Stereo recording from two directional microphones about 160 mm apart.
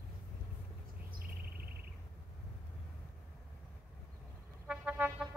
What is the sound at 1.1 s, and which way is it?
Bird, 65° right (ahead or behind).